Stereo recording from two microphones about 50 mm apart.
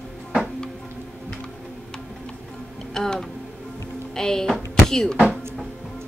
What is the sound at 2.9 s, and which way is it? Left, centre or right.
Speech, centre.